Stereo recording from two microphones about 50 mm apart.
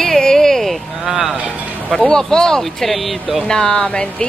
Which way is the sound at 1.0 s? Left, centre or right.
Centre.